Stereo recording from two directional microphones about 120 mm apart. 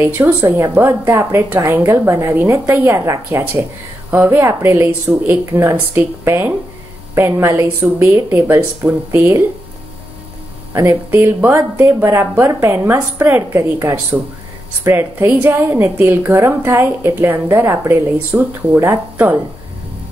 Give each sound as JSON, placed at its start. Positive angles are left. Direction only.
{"t": 0.2, "sound": "a woman's voice", "side_deg": -20}
{"t": 10.7, "sound": "a woman's voice", "side_deg": -25}